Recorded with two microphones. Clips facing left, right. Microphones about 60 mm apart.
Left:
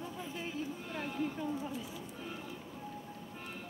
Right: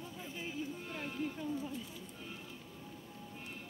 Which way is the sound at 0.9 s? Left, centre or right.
Left.